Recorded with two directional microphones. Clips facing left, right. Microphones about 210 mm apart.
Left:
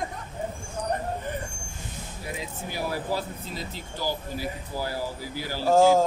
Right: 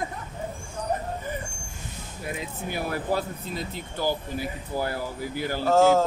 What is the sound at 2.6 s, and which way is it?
Speech, 55° right (ahead or behind).